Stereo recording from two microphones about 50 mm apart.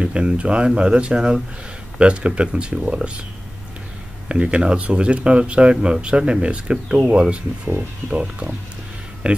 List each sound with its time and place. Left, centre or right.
0.0 s speech: right
4.3 s speech: right